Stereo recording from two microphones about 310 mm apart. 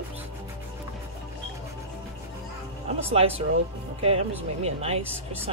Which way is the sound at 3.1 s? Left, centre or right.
Centre.